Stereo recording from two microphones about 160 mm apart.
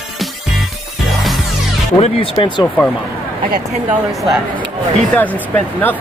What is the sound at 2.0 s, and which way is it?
Speech, 35° left (ahead or behind).